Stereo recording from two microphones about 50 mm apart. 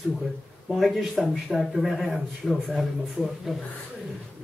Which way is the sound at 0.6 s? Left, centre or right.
Centre.